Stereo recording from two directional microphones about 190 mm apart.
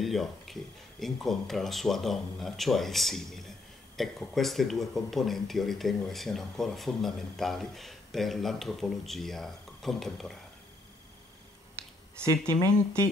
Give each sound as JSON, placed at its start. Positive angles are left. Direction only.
{"t": 0.0, "sound": "speech", "side_deg": 0}
{"t": 12.2, "sound": "speech", "side_deg": -15}